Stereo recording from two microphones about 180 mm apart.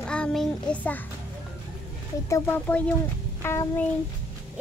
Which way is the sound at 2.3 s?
10° left (ahead or behind).